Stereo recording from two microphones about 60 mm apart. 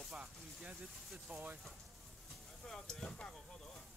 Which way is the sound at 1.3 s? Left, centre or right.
Right.